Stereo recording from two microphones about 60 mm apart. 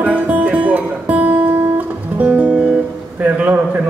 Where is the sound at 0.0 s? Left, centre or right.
Right.